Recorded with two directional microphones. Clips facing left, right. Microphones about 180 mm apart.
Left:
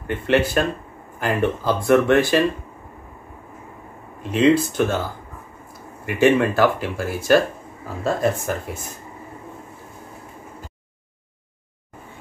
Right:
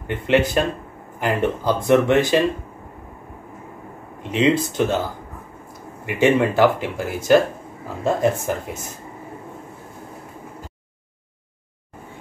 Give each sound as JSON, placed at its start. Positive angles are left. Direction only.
{"t": 0.0, "sound": "speech", "side_deg": -15}
{"t": 4.2, "sound": "speech", "side_deg": -20}
{"t": 6.0, "sound": "speech", "side_deg": -20}